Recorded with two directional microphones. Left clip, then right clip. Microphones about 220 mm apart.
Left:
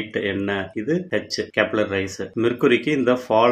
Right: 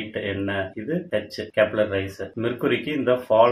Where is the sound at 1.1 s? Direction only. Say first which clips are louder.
Left 2 dB; 45° left (ahead or behind).